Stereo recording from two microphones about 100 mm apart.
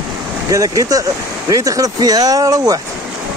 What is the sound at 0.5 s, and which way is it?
Speech, 35° right (ahead or behind).